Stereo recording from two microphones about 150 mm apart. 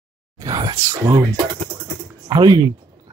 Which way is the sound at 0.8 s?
25° right (ahead or behind).